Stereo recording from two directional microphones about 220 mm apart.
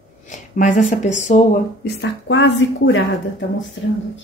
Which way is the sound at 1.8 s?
50° left (ahead or behind).